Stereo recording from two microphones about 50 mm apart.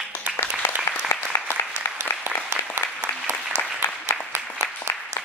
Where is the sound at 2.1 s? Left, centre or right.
Left.